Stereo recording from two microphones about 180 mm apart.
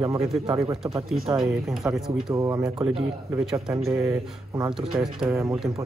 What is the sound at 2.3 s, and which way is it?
Speech, 15° right (ahead or behind).